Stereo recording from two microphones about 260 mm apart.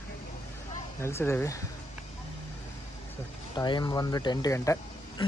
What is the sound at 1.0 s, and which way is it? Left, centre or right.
Speech, centre.